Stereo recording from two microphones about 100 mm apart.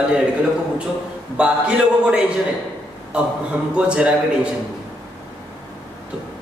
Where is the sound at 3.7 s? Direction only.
10° right (ahead or behind).